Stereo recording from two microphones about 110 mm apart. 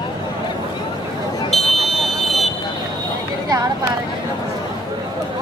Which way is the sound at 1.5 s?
Centre (ahead or behind).